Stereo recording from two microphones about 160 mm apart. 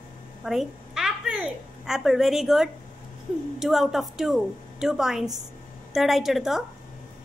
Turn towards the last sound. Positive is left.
turn(degrees=0)  # may be behind; listen again after turning